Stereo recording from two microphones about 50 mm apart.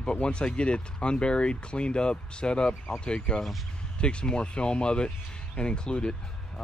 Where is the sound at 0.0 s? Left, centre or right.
Centre.